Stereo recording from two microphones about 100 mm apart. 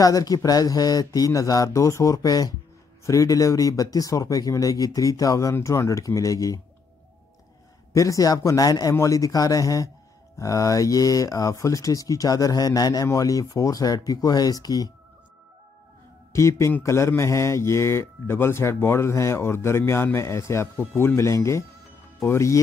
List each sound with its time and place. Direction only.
0.0 s speech: 35° left (ahead or behind)
7.9 s speech: 35° left (ahead or behind)
16.3 s a man's voice: 30° left (ahead or behind)